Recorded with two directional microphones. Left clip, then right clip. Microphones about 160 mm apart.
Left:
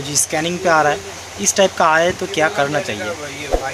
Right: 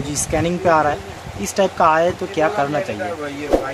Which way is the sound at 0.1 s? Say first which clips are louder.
Left 1 dB; 10° right (ahead or behind).